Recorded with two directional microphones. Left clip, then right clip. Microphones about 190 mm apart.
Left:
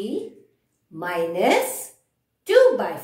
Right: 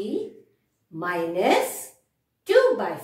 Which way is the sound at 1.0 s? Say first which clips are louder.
Left 2 dB; 25° left (ahead or behind).